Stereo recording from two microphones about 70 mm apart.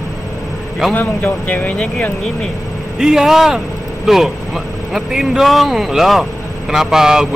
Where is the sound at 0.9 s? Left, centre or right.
Left.